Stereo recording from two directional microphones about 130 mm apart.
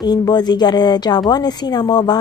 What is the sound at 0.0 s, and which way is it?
A woman's voice, 30° left (ahead or behind).